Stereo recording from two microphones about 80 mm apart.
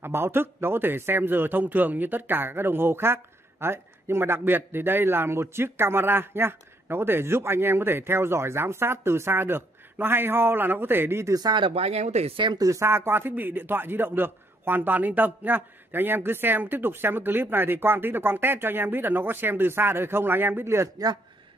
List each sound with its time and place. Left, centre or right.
0.0 s a man's voice: right
11.3 s speech: right
12.5 s speech: right
12.8 s a man's voice: right